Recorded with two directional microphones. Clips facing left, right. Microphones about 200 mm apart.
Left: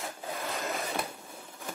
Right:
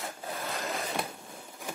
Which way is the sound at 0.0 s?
Centre (ahead or behind).